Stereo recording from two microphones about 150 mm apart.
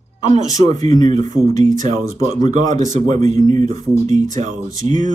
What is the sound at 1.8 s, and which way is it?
Speech, 25° left (ahead or behind).